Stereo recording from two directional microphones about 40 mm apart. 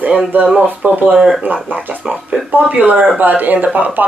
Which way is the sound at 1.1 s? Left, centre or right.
Centre.